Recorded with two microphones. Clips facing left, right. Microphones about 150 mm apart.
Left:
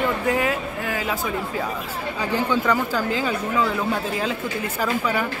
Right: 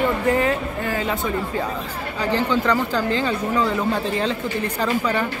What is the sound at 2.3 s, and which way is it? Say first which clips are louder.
Speech: right 1 dB; 10° left (ahead or behind).